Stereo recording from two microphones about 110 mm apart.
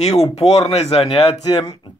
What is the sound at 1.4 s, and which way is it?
Speech, 35° left (ahead or behind).